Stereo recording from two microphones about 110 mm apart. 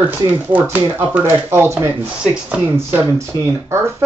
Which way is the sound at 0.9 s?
20° right (ahead or behind).